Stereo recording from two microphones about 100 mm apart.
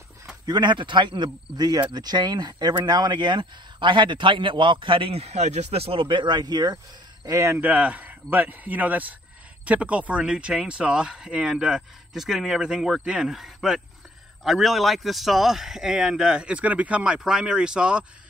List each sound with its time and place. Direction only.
0.5 s speech: 50° right (ahead or behind)
7.2 s speech: 30° right (ahead or behind)
7.5 s a man's voice: 15° right (ahead or behind)